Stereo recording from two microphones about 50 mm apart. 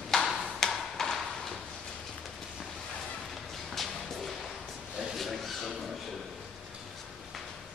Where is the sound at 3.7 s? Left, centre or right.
Centre.